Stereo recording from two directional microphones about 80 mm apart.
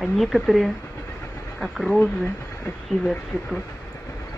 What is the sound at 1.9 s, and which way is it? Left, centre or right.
Speech, left.